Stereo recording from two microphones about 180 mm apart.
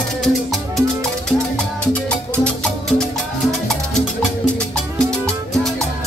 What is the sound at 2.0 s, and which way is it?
Music, 5° left (ahead or behind).